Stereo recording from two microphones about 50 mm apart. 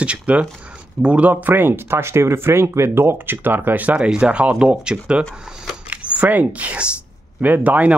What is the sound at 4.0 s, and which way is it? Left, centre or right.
Speech, centre.